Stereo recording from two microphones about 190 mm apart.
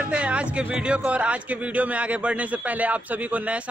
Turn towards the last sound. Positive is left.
turn(degrees=-5)  # may be behind; listen again after turning